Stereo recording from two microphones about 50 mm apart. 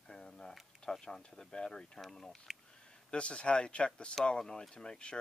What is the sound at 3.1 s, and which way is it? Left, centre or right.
Speech, left.